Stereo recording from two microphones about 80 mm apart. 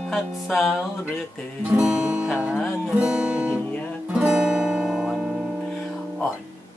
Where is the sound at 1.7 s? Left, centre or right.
Centre.